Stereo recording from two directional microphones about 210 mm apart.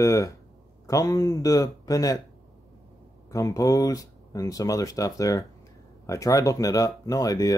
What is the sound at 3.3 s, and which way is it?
Speech, 15° left (ahead or behind).